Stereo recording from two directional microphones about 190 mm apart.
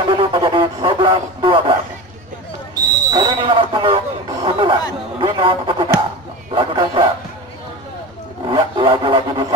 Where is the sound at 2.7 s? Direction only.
25° right (ahead or behind).